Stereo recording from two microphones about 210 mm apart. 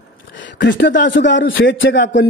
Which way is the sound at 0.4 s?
60° left (ahead or behind).